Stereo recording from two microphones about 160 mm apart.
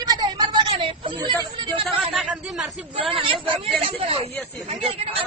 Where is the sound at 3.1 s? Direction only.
35° right (ahead or behind).